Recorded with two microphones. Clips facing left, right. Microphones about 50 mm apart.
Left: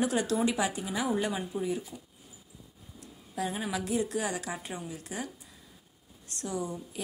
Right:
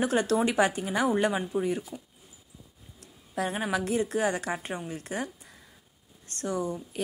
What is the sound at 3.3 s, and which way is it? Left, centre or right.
Speech, right.